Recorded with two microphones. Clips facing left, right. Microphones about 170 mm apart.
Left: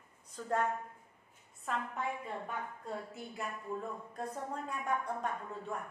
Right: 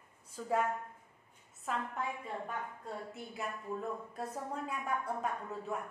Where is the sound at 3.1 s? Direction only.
Centre (ahead or behind).